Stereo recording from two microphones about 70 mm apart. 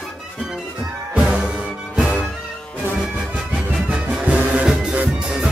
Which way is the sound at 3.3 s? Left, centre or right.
Centre.